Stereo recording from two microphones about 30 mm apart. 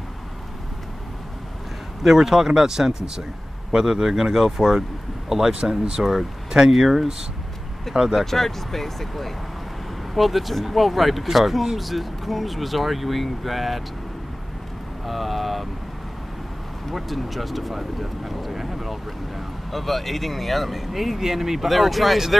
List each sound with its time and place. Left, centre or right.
2.0 s speech: centre
5.5 s speech: right
6.7 s speech: centre
8.3 s speech: centre
15.0 s speech: centre
16.9 s speech: centre